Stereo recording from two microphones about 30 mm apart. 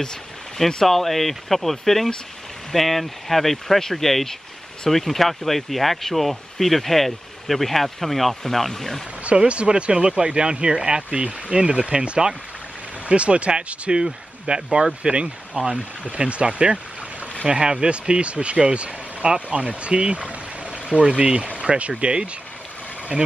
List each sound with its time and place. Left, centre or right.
0.8 s speech: centre
9.5 s speech: right
15.0 s speech: right